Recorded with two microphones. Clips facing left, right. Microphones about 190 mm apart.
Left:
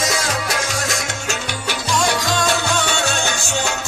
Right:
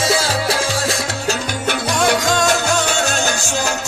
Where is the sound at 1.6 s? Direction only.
55° right (ahead or behind).